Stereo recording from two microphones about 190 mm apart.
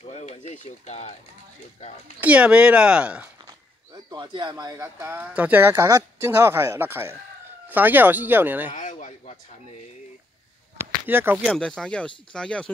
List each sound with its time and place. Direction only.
0.0 s speech: 35° left (ahead or behind)
2.1 s speech: 5° right (ahead or behind)
3.4 s speech: 20° right (ahead or behind)
8.7 s speech: 40° left (ahead or behind)
11.1 s speech: 10° right (ahead or behind)
11.4 s speech: 5° left (ahead or behind)